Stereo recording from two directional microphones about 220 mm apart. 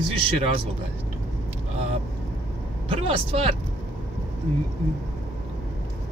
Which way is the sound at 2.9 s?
25° right (ahead or behind).